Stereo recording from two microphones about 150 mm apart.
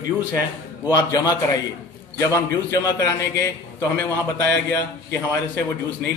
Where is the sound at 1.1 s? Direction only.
25° left (ahead or behind).